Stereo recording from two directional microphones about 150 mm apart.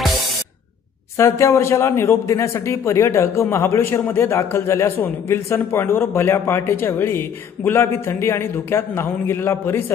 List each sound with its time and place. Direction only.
1.1 s a man's voice: 20° left (ahead or behind)